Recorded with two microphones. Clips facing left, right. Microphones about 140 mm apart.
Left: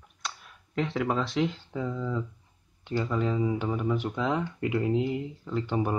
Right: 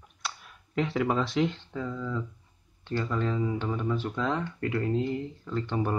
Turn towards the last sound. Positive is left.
turn(degrees=10)  # may be behind; listen again after turning